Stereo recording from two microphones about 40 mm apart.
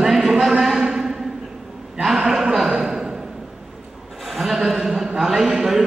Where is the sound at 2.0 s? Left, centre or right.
Centre.